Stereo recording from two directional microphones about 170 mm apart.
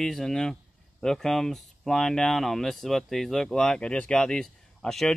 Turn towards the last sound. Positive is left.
turn(degrees=0)  # may be behind; listen again after turning